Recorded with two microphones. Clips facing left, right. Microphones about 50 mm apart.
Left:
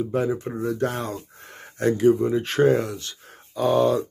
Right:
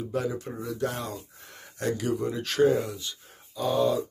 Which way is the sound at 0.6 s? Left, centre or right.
Left.